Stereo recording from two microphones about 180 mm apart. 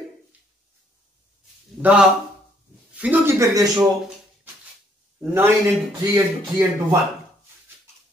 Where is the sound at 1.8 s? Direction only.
5° right (ahead or behind).